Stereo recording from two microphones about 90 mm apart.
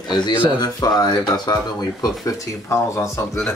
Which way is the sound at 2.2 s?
35° left (ahead or behind).